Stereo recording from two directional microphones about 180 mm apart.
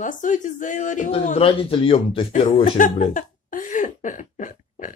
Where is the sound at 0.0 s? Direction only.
45° left (ahead or behind).